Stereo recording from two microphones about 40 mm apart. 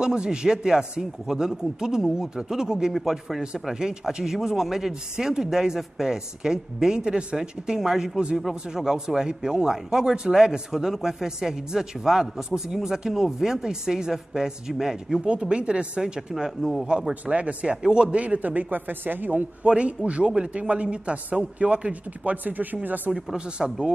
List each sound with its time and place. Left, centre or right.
0.0 s a man's voice: right
15.4 s a man's voice: right
17.1 s speech: right
17.8 s a man's voice: right
18.2 s a man's voice: right
19.6 s a man's voice: right
23.1 s a man's voice: centre